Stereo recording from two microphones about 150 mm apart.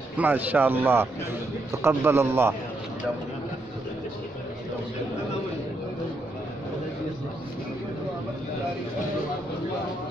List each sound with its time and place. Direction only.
0.2 s speech: 10° right (ahead or behind)